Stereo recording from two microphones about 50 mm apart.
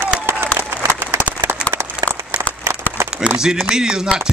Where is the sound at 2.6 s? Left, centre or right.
Right.